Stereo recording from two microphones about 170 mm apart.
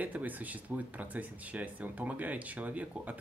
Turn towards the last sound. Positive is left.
turn(degrees=-10)  # may be behind; listen again after turning